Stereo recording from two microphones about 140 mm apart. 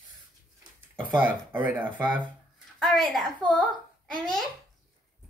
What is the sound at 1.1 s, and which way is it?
Speech, 10° right (ahead or behind).